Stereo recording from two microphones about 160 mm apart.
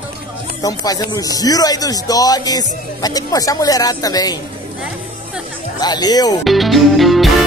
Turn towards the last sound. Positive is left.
turn(degrees=0)  # may be behind; listen again after turning